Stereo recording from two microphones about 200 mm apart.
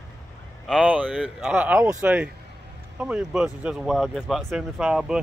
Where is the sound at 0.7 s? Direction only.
5° right (ahead or behind).